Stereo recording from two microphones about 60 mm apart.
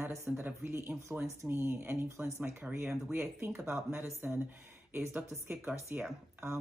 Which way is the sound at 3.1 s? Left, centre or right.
Right.